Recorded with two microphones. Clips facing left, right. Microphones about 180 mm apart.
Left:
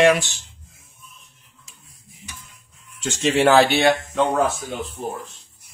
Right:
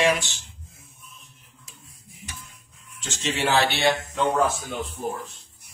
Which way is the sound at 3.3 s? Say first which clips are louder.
Left 8 dB; 50° left (ahead or behind).